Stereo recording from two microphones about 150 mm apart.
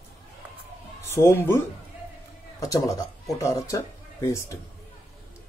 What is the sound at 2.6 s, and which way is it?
Speech, 25° left (ahead or behind).